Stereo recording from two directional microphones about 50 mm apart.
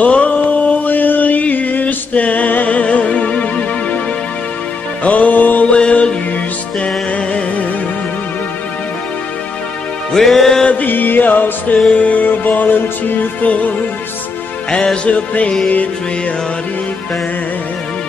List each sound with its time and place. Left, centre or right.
0.0 s a sound: left
5.0 s music: left
5.8 s music: centre
10.1 s music: centre
10.7 s music: left
14.7 s music: centre